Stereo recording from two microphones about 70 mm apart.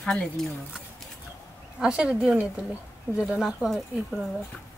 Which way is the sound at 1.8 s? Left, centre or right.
Centre.